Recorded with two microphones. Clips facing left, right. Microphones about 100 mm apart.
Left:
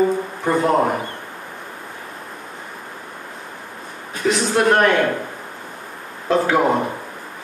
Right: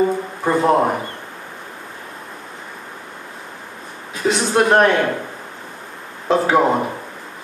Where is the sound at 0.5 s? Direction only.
15° right (ahead or behind).